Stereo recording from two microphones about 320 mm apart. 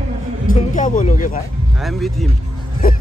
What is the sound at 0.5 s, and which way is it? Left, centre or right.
Speech, left.